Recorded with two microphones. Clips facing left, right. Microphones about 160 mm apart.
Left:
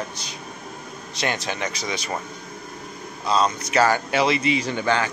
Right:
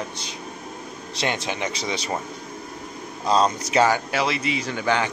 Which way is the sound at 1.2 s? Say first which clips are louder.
Even; 25° right (ahead or behind).